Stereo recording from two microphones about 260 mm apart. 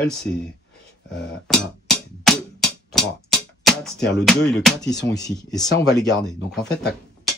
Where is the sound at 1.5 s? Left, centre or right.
Centre.